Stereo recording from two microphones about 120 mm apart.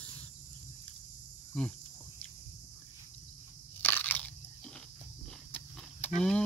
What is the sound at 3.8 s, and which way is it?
Crunch, 15° left (ahead or behind).